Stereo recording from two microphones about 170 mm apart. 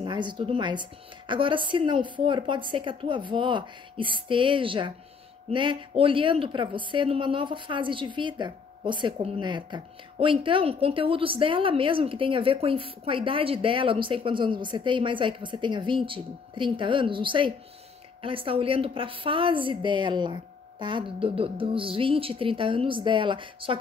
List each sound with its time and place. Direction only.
0.0 s speech: 25° right (ahead or behind)